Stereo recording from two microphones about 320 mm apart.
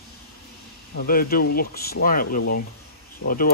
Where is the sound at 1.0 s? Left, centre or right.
Left.